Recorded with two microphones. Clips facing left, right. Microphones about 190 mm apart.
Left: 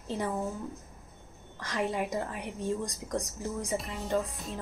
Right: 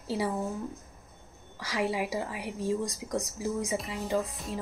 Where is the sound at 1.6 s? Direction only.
5° right (ahead or behind).